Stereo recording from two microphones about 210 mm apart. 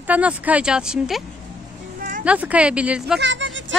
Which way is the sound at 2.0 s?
40° right (ahead or behind).